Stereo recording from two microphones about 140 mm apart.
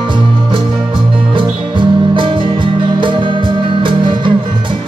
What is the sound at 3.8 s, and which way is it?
Music, 35° right (ahead or behind).